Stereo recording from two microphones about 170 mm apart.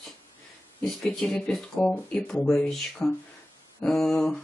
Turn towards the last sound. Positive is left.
turn(degrees=5)  # may be behind; listen again after turning